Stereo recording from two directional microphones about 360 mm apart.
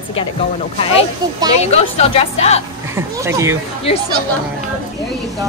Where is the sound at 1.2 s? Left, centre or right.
Centre.